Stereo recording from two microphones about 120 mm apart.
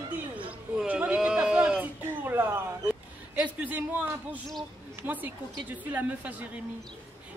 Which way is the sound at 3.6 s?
10° right (ahead or behind).